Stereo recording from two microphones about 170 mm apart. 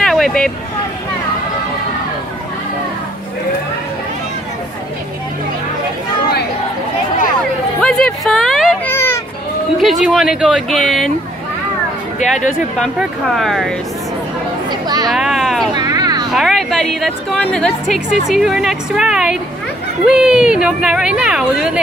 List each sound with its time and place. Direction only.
0.0 s vehicle: centre (ahead or behind)
7.8 s a sound: 5° left (ahead or behind)
8.8 s a sound: 15° left (ahead or behind)
9.8 s a woman's voice: centre (ahead or behind)
12.2 s speech: 45° left (ahead or behind)
12.7 s a woman's voice: centre (ahead or behind)
14.7 s speech: 25° right (ahead or behind)
15.0 s a woman's voice: centre (ahead or behind)
15.7 s vehicle: 25° right (ahead or behind)
16.3 s a woman's voice: centre (ahead or behind)